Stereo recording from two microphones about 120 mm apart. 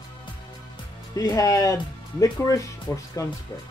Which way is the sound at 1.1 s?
30° left (ahead or behind).